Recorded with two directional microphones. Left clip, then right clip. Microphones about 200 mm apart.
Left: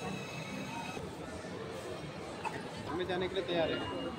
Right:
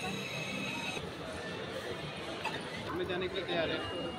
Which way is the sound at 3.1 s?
25° left (ahead or behind).